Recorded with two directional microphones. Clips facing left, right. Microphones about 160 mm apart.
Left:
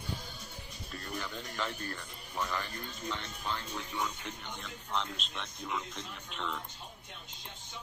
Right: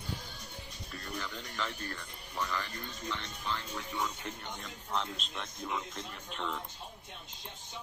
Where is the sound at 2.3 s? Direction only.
15° left (ahead or behind).